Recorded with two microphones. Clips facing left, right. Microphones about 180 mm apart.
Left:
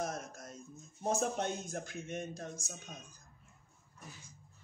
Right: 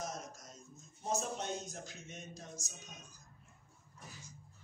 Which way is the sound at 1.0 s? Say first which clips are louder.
Left 4 dB; 55° left (ahead or behind).